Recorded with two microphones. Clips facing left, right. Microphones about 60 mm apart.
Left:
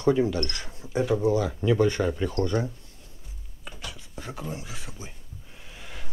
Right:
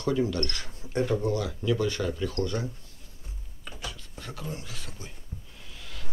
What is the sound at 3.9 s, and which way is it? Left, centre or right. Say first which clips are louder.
Speech: left 3 dB; centre.